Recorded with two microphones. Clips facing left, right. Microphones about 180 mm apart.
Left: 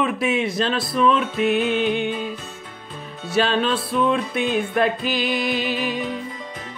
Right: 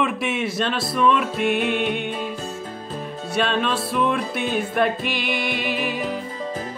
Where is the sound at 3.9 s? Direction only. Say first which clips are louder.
Left 2 dB; 25° left (ahead or behind).